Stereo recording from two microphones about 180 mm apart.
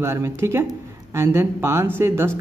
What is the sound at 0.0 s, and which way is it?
Speech, 15° right (ahead or behind).